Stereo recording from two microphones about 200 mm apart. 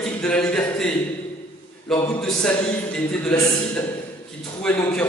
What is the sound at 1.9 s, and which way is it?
A man's voice, 5° left (ahead or behind).